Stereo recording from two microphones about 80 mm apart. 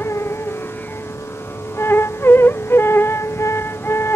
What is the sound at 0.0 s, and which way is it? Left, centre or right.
Music, left.